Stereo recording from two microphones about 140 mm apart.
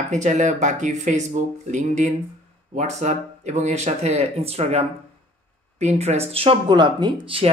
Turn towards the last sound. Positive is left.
turn(degrees=-35)  # may be behind; listen again after turning